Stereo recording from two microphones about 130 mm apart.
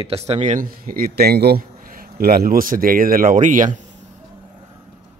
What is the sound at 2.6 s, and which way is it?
Speech, 90° right.